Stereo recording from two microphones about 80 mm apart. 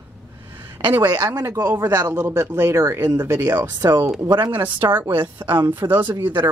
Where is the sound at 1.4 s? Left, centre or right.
Right.